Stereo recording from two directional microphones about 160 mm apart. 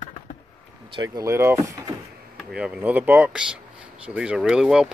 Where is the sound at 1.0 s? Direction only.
20° right (ahead or behind).